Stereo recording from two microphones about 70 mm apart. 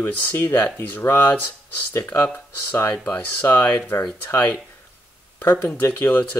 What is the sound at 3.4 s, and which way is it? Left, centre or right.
Speech, left.